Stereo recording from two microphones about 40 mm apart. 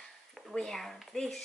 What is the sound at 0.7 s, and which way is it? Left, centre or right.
Speech, centre.